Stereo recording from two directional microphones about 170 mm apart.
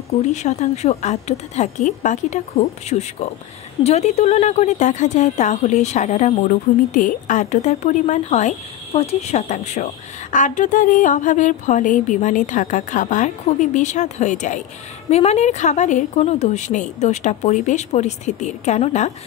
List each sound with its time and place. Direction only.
0.3 s a woman's voice: 45° left (ahead or behind)